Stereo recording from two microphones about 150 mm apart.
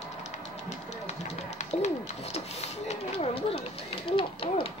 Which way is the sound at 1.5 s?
50° left (ahead or behind).